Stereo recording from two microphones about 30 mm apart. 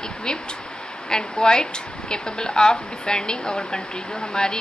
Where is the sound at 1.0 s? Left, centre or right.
Left.